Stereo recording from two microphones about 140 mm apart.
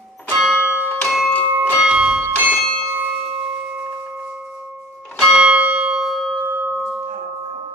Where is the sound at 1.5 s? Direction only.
10° right (ahead or behind).